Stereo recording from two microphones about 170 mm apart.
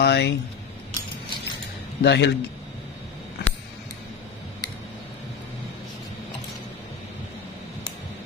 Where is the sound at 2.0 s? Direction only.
85° left.